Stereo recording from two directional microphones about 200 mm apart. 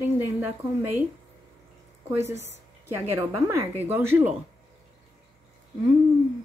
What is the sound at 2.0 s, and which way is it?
Speech, 15° right (ahead or behind).